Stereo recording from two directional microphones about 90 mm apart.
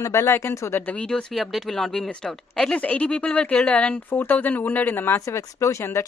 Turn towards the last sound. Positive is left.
turn(degrees=30)  # may be behind; listen again after turning